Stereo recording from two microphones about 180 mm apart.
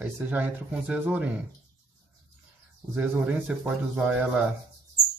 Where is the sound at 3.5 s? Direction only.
10° right (ahead or behind).